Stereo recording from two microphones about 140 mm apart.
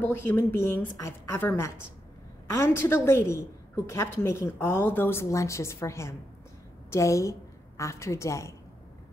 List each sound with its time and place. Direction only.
0.0 s a woman's voice: 15° left (ahead or behind)